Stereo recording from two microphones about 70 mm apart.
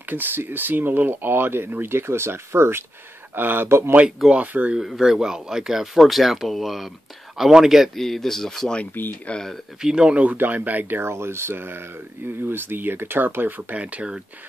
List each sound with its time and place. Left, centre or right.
0.1 s speech: right
4.3 s speech: right
4.7 s speech: centre
8.9 s speech: left
9.3 s speech: centre
9.8 s speech: centre